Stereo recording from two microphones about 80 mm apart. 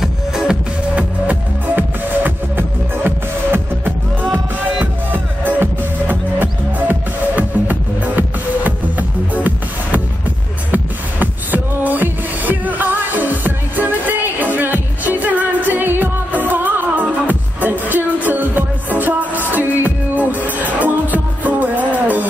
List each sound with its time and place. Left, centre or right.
0.0 s music: centre